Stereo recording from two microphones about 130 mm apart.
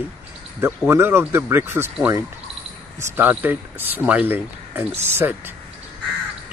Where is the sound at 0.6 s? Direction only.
20° right (ahead or behind).